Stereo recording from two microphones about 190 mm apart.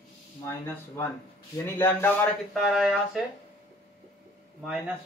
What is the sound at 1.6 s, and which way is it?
Speech, 10° left (ahead or behind).